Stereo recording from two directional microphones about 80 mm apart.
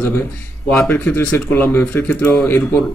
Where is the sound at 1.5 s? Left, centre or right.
Left.